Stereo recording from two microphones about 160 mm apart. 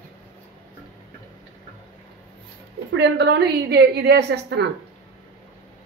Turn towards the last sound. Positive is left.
turn(degrees=-90)